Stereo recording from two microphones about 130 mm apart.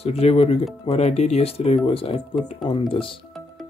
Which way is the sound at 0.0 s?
50° left (ahead or behind).